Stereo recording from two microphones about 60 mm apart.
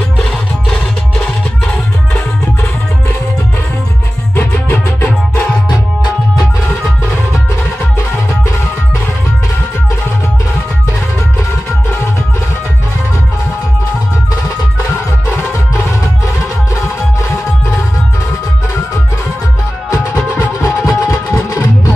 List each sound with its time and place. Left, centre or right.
4.4 s music: left
20.3 s music: left
21.3 s music: left